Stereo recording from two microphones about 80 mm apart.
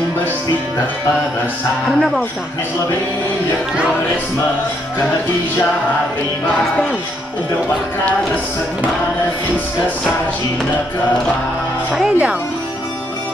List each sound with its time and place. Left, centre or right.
1.9 s speech: centre
11.9 s speech: centre